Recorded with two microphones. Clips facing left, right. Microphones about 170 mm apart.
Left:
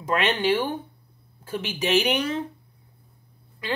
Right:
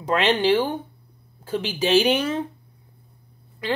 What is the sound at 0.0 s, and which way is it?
Speech, 30° right (ahead or behind).